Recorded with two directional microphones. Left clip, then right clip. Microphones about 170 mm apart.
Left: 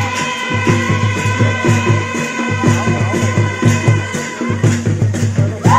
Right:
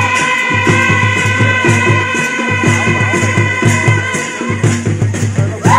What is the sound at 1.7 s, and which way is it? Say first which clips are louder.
Music: right 5 dB; 25° right (ahead or behind).